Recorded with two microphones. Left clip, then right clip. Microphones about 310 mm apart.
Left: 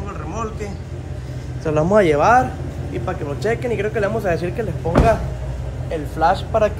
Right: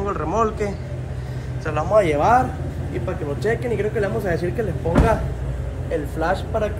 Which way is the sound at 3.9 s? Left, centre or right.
Centre.